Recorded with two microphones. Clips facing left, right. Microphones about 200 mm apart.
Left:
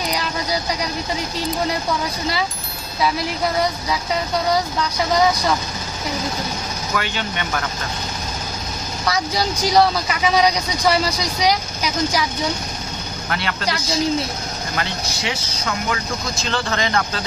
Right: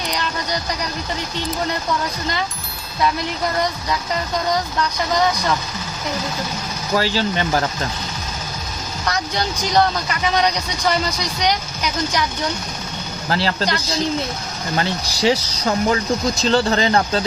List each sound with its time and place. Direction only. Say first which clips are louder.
0.1 s speech: left 1 dB; 5° left (ahead or behind)
6.9 s speech: right 7 dB; 35° right (ahead or behind)
9.0 s speech: left 2 dB; 5° left (ahead or behind)
13.3 s speech: right 5 dB; 30° right (ahead or behind)
14.8 s speech: right 7 dB; 35° right (ahead or behind)